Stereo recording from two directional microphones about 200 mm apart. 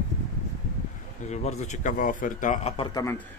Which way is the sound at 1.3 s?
35° left (ahead or behind).